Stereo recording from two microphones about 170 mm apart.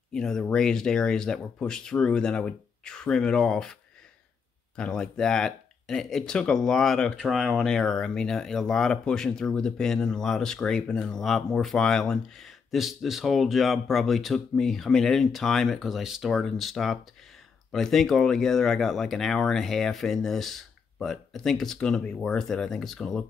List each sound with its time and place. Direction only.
0.1 s speech: 5° left (ahead or behind)
4.7 s speech: 5° left (ahead or behind)